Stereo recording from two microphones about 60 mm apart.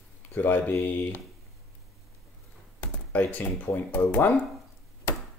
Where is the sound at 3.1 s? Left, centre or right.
Left.